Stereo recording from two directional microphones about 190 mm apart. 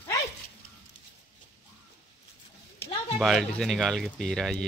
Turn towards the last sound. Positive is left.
turn(degrees=5)  # may be behind; listen again after turning